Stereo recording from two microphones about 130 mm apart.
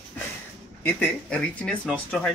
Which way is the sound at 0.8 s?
10° left (ahead or behind).